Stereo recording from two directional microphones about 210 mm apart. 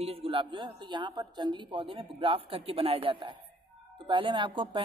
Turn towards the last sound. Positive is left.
turn(degrees=-25)  # may be behind; listen again after turning